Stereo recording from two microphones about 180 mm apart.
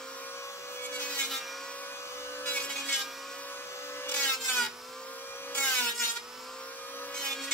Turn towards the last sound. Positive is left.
turn(degrees=5)  # may be behind; listen again after turning